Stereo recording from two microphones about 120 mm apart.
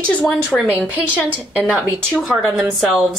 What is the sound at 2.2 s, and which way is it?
Speech, centre (ahead or behind).